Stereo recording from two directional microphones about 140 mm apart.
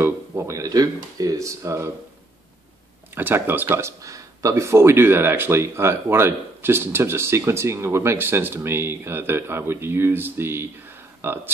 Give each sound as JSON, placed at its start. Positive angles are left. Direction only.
{"t": 0.0, "sound": "speech", "side_deg": -20}
{"t": 3.2, "sound": "speech", "side_deg": -15}